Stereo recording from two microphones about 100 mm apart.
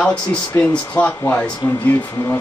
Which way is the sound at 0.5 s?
15° left (ahead or behind).